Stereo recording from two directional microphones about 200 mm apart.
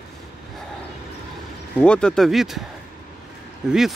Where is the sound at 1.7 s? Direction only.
5° left (ahead or behind).